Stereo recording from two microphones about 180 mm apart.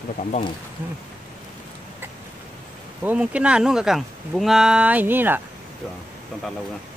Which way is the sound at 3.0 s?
5° right (ahead or behind).